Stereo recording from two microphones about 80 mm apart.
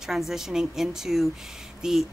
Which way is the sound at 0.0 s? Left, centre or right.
Centre.